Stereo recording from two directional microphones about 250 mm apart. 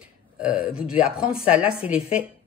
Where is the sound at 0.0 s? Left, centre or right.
Centre.